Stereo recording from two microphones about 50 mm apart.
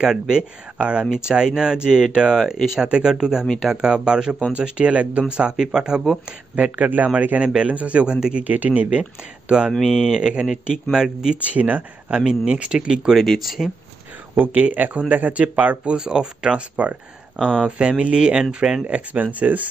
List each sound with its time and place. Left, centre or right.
0.0 s speech: centre
6.5 s speech: right
7.4 s speech: right
8.5 s speech: right
9.7 s speech: centre
11.3 s speech: right
12.2 s speech: centre
13.1 s speech: centre
14.4 s speech: right
19.4 s speech: right